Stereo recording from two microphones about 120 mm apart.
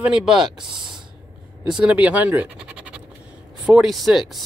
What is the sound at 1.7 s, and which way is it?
Speech, 10° right (ahead or behind).